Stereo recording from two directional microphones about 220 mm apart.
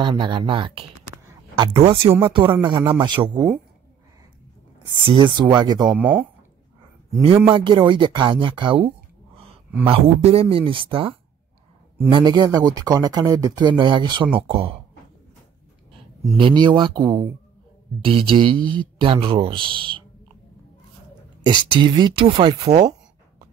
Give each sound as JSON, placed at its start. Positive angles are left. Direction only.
{"t": 0.0, "sound": "speech", "side_deg": -20}
{"t": 4.7, "sound": "speech", "side_deg": -20}
{"t": 5.9, "sound": "speech", "side_deg": -10}
{"t": 7.4, "sound": "speech", "side_deg": -20}
{"t": 16.3, "sound": "speech", "side_deg": -20}
{"t": 21.4, "sound": "speech", "side_deg": -20}